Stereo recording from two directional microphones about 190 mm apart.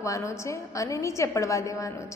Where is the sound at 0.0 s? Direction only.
15° left (ahead or behind).